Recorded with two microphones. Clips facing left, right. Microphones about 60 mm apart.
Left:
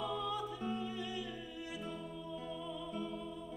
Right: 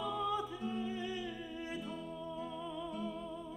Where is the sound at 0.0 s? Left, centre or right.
Centre.